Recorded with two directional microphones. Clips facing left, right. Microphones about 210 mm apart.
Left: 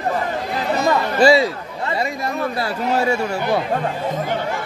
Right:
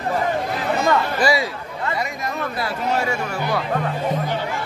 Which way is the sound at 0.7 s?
30° left (ahead or behind).